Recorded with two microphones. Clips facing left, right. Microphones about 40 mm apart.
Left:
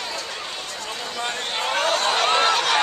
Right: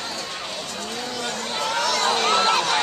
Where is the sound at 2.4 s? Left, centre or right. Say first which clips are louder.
Left 1 dB; left.